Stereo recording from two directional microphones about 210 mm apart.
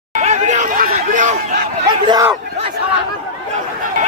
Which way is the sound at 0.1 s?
35° right (ahead or behind).